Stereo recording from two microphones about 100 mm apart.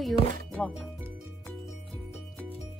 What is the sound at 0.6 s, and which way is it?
Speech, 5° left (ahead or behind).